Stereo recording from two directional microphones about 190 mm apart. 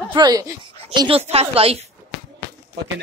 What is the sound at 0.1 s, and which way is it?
A woman's voice, 20° right (ahead or behind).